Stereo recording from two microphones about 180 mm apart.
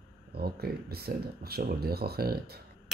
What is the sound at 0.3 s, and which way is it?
Speech, 60° right (ahead or behind).